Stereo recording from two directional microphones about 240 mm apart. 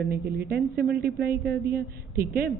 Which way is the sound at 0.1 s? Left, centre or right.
Right.